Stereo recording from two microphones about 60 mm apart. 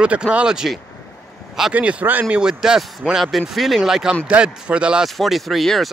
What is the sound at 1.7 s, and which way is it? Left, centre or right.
Speech, right.